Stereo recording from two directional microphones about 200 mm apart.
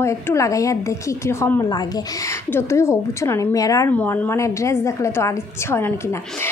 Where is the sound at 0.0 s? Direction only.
15° left (ahead or behind).